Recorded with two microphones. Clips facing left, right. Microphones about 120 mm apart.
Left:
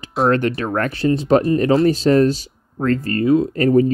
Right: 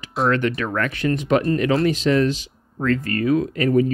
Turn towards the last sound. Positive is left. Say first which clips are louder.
# left 4 dB
turn(degrees=35)  # may be behind; listen again after turning